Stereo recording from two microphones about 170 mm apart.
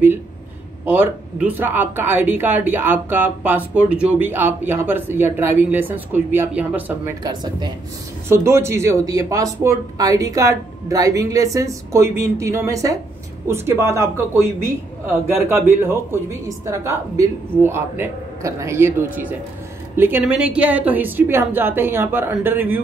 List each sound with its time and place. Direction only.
0.8 s speech: 10° right (ahead or behind)
7.2 s speech: 25° right (ahead or behind)